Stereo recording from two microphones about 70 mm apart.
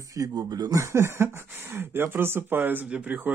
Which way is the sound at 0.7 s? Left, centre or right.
Right.